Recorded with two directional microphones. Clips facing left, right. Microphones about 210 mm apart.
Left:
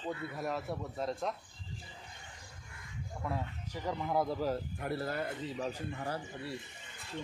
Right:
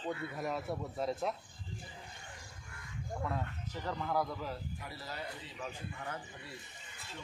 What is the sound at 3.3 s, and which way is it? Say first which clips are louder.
Speech: left 1 dB; 10° left (ahead or behind).